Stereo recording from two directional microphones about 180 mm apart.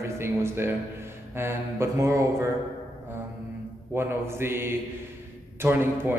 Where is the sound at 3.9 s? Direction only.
15° right (ahead or behind).